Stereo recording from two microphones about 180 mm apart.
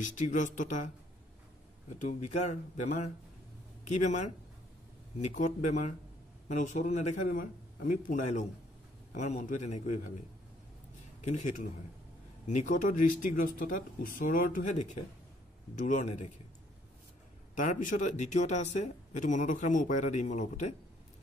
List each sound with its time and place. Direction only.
0.0 s speech: 45° left (ahead or behind)
2.0 s a man's voice: 40° left (ahead or behind)
3.8 s a man's voice: 40° left (ahead or behind)
17.6 s speech: 45° left (ahead or behind)